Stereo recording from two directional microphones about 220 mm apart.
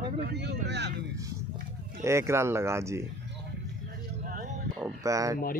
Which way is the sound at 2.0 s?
10° right (ahead or behind).